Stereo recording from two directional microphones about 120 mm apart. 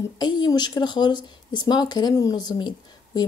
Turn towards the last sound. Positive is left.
turn(degrees=35)  # may be behind; listen again after turning